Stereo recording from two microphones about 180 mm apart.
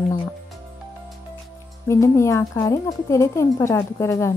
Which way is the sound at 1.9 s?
15° left (ahead or behind).